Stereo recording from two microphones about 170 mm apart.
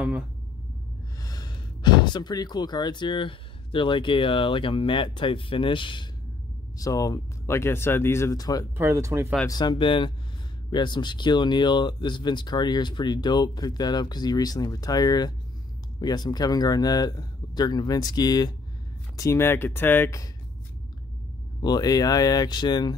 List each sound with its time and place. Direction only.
1.2 s speech: 25° left (ahead or behind)
8.7 s speech: 15° right (ahead or behind)
9.5 s speech: 25° left (ahead or behind)
21.5 s speech: 25° left (ahead or behind)